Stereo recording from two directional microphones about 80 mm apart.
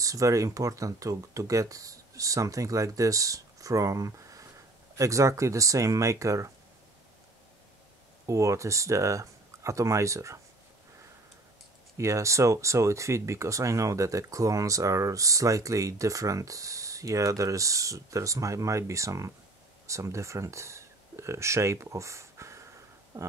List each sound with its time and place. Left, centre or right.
0.0 s speech: right
8.3 s speech: right
12.0 s speech: right
23.1 s a sound: right